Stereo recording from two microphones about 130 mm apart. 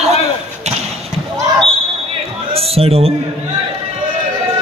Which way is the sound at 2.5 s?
50° right (ahead or behind).